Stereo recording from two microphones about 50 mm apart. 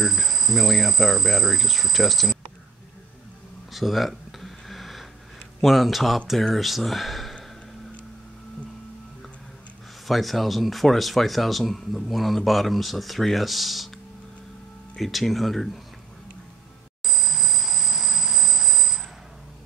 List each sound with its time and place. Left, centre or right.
0.0 s speech: centre
3.7 s a sound: centre
5.6 s speech: centre
10.0 s speech: centre
15.0 s speech: centre
17.0 s bicycle bell: centre